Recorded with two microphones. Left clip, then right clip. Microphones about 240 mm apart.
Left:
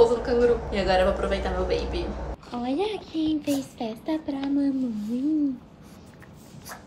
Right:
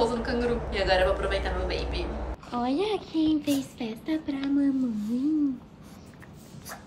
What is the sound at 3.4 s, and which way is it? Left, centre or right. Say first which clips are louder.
Speech: left 1 dB; centre.